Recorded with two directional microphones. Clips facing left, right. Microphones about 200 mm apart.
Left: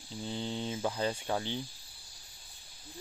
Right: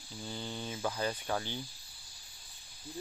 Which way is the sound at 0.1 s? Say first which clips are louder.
Left 5 dB; 20° left (ahead or behind).